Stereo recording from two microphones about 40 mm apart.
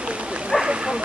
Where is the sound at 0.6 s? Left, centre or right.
Centre.